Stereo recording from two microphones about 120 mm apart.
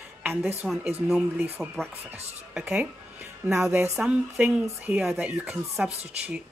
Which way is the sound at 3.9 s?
10° right (ahead or behind).